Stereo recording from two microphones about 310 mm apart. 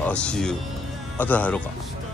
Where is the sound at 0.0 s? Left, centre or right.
Centre.